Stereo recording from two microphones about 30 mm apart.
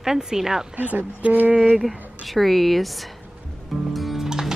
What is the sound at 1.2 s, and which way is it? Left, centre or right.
Speech, right.